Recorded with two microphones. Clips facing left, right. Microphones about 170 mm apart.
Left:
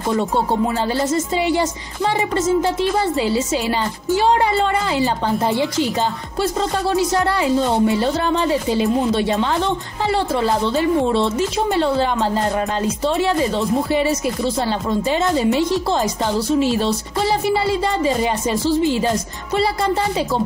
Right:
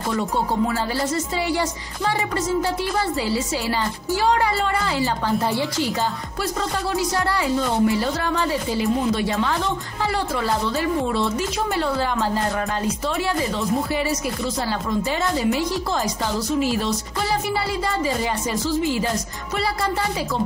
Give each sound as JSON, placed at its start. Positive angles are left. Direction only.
{"t": 0.9, "sound": "speech", "side_deg": 20}
{"t": 13.9, "sound": "speech", "side_deg": 25}